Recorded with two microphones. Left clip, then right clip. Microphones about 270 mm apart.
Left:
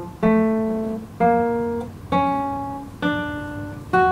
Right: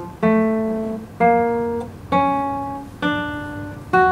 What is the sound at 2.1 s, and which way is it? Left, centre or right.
Music, centre.